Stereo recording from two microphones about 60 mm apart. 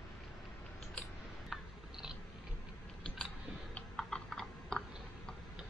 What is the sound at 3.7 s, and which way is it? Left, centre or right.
Typing, centre.